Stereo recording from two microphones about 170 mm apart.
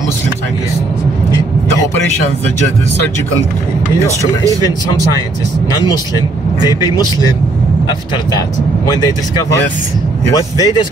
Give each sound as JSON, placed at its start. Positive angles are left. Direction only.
{"t": 4.2, "sound": "speech", "side_deg": -20}
{"t": 10.3, "sound": "speech", "side_deg": 20}